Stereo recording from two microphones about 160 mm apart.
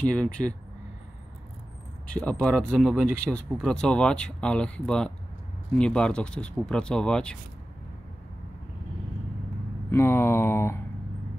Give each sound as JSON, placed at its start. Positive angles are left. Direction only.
{"t": 0.1, "sound": "speech", "side_deg": 5}
{"t": 2.1, "sound": "speech", "side_deg": 10}
{"t": 9.8, "sound": "speech", "side_deg": 15}